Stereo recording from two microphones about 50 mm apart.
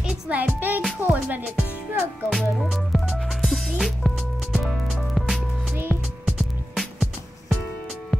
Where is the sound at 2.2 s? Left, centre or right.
Centre.